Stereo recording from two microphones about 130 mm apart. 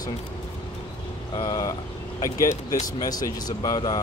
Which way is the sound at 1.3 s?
30° left (ahead or behind).